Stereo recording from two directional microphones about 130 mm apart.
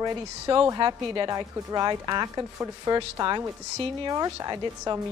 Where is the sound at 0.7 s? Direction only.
35° right (ahead or behind).